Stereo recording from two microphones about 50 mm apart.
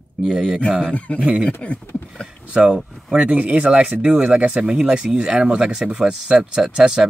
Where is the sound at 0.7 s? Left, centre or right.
Right.